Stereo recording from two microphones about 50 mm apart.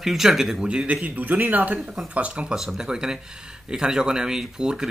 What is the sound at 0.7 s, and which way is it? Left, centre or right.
A man's voice, right.